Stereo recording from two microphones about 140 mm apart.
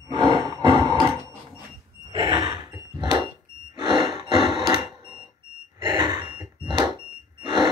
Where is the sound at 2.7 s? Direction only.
35° right (ahead or behind).